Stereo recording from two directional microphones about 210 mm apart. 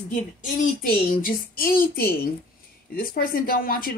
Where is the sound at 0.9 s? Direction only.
40° left (ahead or behind).